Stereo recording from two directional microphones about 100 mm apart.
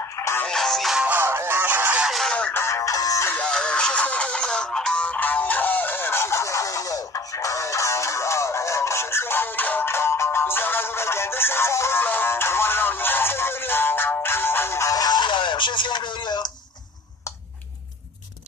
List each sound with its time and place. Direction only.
0.2 s music: 25° left (ahead or behind)
0.5 s music: centre (ahead or behind)
1.0 s music: 20° right (ahead or behind)
2.0 s music: centre (ahead or behind)
2.3 s music: 15° left (ahead or behind)
2.6 s music: 30° left (ahead or behind)
3.3 s music: 10° left (ahead or behind); by 16.5 s 45° left (ahead or behind)